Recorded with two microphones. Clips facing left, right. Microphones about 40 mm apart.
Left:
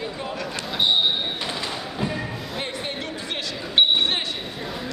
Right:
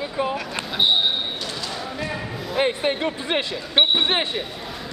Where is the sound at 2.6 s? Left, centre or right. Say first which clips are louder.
Right 11 dB; right.